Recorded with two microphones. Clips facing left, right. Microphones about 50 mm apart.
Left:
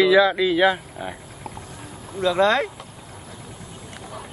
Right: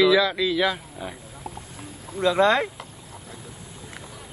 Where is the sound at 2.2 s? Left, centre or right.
Centre.